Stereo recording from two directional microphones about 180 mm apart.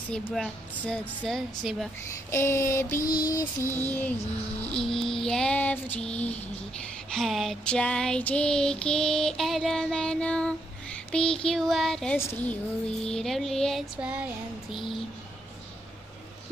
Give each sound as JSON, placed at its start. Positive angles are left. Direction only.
{"t": 0.1, "sound": "female singing", "side_deg": 5}
{"t": 2.3, "sound": "child singing", "side_deg": 15}
{"t": 4.6, "sound": "female singing", "side_deg": 5}
{"t": 4.9, "sound": "female singing", "side_deg": 30}
{"t": 5.2, "sound": "child singing", "side_deg": 5}
{"t": 7.1, "sound": "female singing", "side_deg": 0}
{"t": 12.2, "sound": "child singing", "side_deg": 10}
{"t": 13.0, "sound": "female singing", "side_deg": 5}